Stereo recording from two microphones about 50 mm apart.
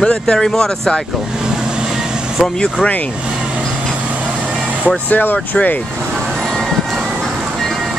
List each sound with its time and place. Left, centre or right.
0.0 s speech: centre
2.4 s speech: centre
4.8 s speech: left